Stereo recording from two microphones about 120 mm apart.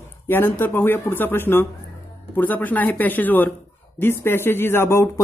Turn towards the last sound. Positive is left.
turn(degrees=20)  # may be behind; listen again after turning